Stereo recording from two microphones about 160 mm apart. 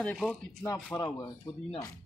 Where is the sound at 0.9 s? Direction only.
30° left (ahead or behind).